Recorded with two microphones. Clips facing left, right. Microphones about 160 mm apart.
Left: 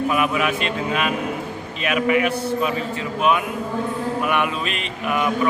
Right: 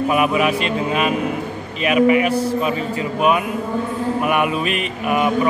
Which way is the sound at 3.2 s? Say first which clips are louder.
Right 2 dB; 5° right (ahead or behind).